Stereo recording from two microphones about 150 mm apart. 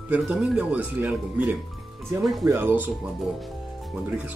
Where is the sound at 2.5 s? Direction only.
15° right (ahead or behind).